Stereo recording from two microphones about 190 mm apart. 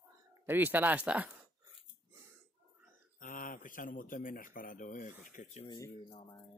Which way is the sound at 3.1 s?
45° left (ahead or behind).